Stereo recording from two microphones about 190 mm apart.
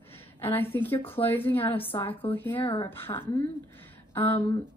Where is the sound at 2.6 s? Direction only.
25° left (ahead or behind).